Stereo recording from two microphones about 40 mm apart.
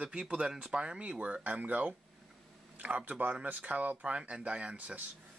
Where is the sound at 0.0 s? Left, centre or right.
Right.